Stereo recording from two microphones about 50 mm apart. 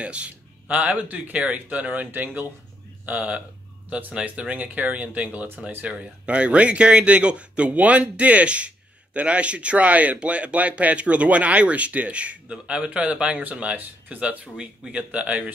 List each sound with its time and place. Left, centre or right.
0.0 s speech: right
4.1 s speech: right
4.5 s speech: right